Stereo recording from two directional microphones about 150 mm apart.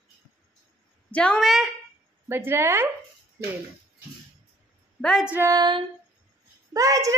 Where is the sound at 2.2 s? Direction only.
15° right (ahead or behind).